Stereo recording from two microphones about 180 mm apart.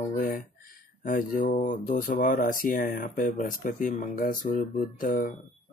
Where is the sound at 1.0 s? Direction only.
45° left (ahead or behind).